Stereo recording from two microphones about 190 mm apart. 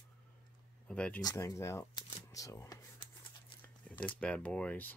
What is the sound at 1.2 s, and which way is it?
Speech, 15° left (ahead or behind).